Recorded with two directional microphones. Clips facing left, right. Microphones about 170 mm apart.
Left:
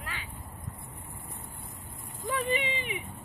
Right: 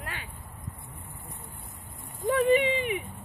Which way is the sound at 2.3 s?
50° right (ahead or behind).